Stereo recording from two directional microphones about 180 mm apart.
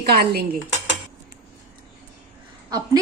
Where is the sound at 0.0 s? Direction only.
60° right (ahead or behind).